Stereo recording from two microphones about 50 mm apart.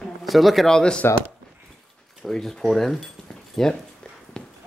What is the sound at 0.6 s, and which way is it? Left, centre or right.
Speech, centre.